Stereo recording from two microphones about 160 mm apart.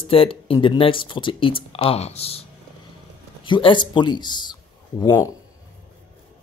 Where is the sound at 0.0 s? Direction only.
35° left (ahead or behind).